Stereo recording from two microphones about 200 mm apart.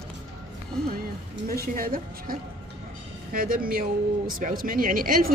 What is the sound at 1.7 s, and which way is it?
Speech, 45° right (ahead or behind).